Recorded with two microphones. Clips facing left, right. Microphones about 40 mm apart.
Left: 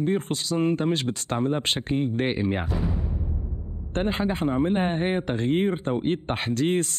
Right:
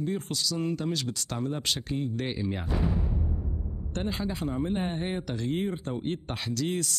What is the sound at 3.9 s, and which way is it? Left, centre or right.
Speech, left.